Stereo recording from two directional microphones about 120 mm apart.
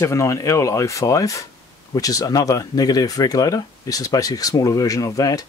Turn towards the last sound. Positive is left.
turn(degrees=30)  # may be behind; listen again after turning